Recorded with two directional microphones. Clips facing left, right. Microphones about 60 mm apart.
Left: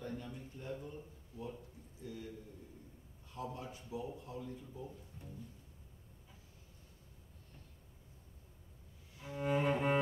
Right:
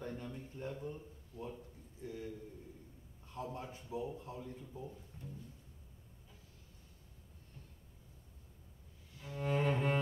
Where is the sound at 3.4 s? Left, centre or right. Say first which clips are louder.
Even; right.